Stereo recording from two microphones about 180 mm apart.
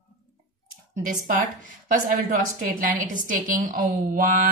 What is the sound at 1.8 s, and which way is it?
Speech, 50° right (ahead or behind).